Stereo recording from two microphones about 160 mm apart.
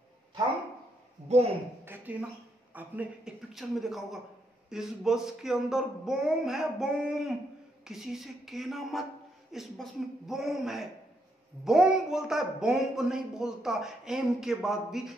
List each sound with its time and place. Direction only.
1.3 s a woman's voice: 40° right (ahead or behind)
1.9 s a sound: 10° right (ahead or behind)
2.7 s speech: 10° right (ahead or behind)